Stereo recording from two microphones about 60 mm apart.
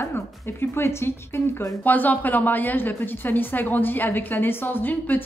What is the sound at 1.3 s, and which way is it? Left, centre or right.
Speech, left.